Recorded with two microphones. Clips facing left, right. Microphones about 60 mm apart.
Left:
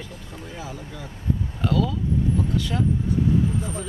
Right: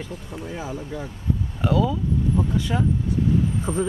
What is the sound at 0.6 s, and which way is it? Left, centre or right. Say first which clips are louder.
Speech: right 5 dB; right.